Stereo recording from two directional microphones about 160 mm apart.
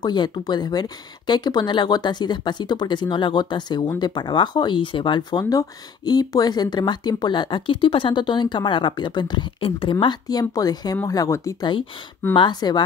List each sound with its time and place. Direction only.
0.0 s speech: 30° left (ahead or behind)